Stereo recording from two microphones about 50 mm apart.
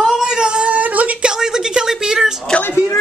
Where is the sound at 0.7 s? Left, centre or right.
Right.